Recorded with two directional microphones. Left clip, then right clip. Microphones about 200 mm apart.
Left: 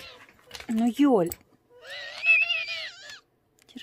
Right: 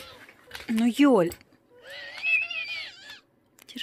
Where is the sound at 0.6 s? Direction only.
10° left (ahead or behind).